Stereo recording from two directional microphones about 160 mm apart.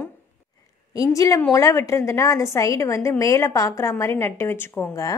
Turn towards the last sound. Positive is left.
turn(degrees=15)  # may be behind; listen again after turning